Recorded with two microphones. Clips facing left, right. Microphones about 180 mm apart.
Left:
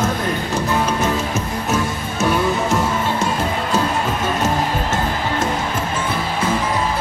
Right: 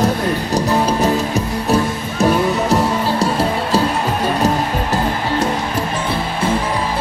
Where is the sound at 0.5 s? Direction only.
35° right (ahead or behind).